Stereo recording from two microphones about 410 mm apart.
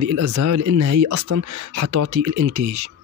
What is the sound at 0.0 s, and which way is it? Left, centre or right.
Speech, right.